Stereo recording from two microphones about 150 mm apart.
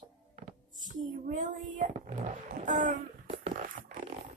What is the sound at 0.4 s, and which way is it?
Child singing, 60° right (ahead or behind).